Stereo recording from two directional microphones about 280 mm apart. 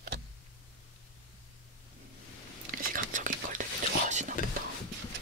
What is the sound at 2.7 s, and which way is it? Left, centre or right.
Whispering, right.